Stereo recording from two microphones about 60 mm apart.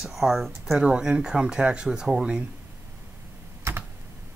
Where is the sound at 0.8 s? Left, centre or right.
Centre.